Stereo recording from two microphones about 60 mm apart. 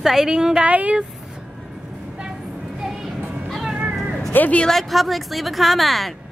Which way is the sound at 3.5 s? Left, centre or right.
Centre.